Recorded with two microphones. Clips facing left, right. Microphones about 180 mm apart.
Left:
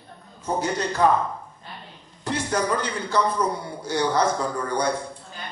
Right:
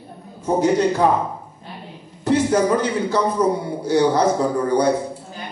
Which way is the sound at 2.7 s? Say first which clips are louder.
Right 5 dB; 10° right (ahead or behind).